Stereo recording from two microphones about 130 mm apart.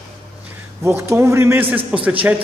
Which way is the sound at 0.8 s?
20° right (ahead or behind).